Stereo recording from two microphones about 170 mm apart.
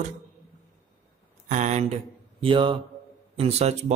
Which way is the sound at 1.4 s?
45° right (ahead or behind).